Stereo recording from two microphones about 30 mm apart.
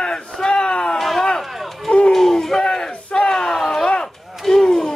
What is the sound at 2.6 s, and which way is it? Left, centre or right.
Crowd, left.